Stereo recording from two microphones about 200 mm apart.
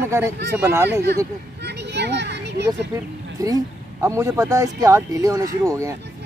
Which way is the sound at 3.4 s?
15° right (ahead or behind).